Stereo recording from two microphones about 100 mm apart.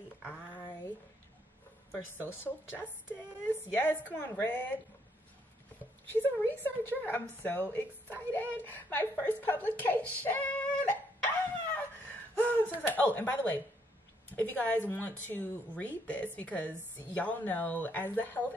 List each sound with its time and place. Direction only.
2.2 s speech: 20° left (ahead or behind)
6.2 s a woman's voice: 20° left (ahead or behind)